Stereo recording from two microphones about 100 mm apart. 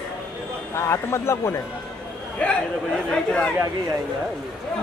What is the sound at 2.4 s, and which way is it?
Speech, 10° left (ahead or behind).